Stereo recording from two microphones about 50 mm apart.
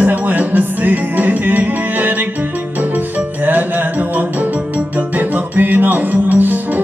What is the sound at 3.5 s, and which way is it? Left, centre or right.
Music, right.